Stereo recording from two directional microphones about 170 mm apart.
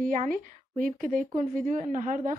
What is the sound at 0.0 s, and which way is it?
A woman's voice, 50° right (ahead or behind).